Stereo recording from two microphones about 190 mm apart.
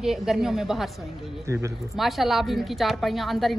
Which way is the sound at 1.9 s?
Centre (ahead or behind).